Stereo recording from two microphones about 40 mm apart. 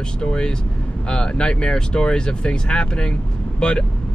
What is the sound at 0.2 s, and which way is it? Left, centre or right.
Speech, left.